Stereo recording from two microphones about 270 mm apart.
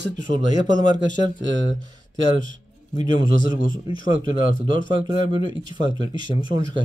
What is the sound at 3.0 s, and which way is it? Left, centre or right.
Speech, centre.